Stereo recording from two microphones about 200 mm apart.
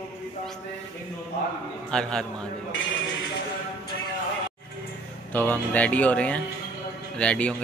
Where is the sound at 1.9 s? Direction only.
5° left (ahead or behind).